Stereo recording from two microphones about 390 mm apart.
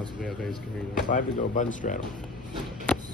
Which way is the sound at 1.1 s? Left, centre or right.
Centre.